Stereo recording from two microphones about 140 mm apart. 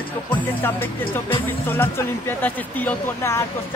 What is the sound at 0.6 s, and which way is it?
Speech, 15° left (ahead or behind).